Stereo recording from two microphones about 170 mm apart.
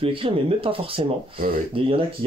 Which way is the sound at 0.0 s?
30° right (ahead or behind).